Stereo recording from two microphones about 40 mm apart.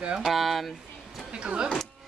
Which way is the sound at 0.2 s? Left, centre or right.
Centre.